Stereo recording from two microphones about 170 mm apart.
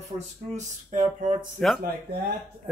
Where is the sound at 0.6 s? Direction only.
45° right (ahead or behind).